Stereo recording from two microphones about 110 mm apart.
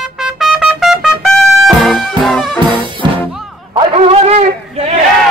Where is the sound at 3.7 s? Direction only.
60° right (ahead or behind).